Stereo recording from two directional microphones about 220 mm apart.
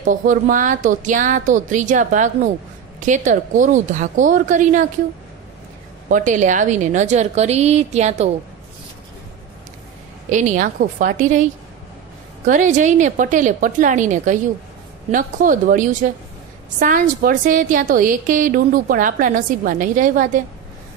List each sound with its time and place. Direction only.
0.0 s a woman's voice: 35° right (ahead or behind)
6.0 s a woman's voice: 35° right (ahead or behind)
10.3 s a woman's voice: 35° right (ahead or behind)
12.4 s a woman's voice: 35° right (ahead or behind)